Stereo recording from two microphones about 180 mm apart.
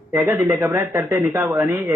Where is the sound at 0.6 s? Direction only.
15° right (ahead or behind).